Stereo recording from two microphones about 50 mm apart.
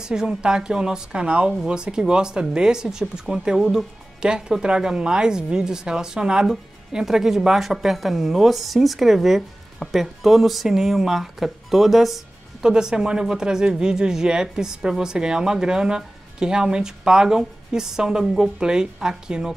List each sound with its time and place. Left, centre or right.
0.0 s speech: centre